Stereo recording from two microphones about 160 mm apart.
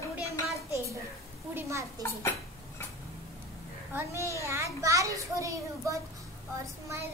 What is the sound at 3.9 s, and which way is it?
A woman's voice, 15° right (ahead or behind).